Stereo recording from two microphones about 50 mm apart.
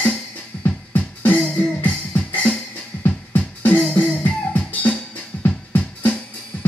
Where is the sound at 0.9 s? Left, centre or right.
Left.